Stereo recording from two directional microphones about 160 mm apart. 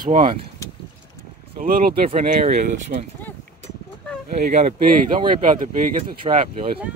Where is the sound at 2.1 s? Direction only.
45° right (ahead or behind).